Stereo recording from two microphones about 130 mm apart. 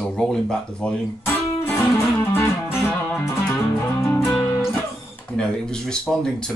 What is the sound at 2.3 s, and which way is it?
Music, 20° left (ahead or behind).